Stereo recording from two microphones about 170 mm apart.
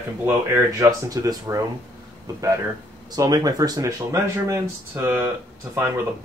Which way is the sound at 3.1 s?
20° right (ahead or behind).